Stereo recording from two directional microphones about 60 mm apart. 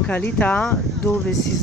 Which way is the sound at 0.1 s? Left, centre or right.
Left.